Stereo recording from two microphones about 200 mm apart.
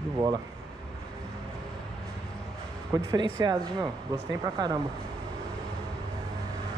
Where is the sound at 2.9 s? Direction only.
20° right (ahead or behind).